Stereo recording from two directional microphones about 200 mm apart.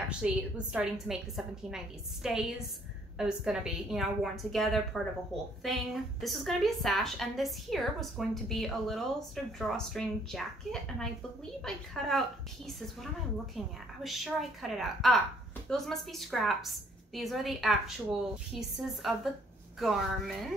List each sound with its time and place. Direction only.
0.2 s a woman's voice: 5° right (ahead or behind)